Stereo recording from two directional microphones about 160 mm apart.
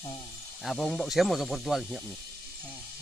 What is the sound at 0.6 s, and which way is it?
Speech, centre (ahead or behind).